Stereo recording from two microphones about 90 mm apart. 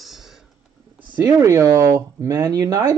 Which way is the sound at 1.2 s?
35° right (ahead or behind).